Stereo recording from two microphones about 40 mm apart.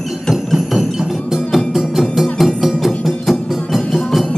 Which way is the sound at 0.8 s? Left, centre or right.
Centre.